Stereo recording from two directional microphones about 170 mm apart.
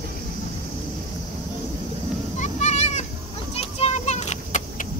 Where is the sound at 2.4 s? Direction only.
40° left (ahead or behind).